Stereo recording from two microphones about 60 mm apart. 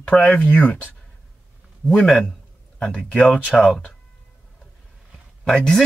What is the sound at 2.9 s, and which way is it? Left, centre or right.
Speech, left.